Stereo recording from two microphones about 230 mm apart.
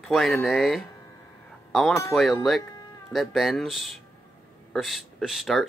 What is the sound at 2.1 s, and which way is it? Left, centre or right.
Speech, centre.